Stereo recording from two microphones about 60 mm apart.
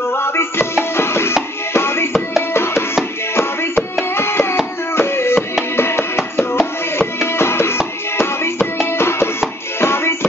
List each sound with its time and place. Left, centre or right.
0.1 s music: left
4.1 s a sound: left
4.9 s music: left
5.8 s chopping: left
7.3 s music: left